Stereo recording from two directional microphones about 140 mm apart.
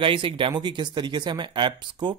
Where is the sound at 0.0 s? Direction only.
35° right (ahead or behind).